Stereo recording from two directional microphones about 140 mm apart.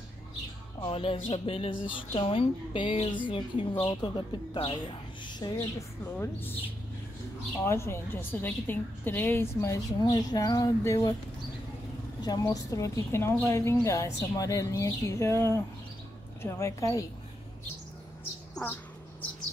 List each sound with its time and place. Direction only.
0.7 s a woman's voice: 40° left (ahead or behind)
6.1 s speech: 15° left (ahead or behind)
7.6 s a woman's voice: 20° left (ahead or behind)
12.2 s a woman's voice: 25° left (ahead or behind)
18.5 s bird: 15° left (ahead or behind)